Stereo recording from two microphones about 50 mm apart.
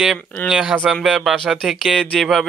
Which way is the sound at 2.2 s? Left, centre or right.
Centre.